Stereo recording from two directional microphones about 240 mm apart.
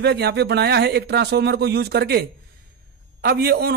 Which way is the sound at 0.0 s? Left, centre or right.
Right.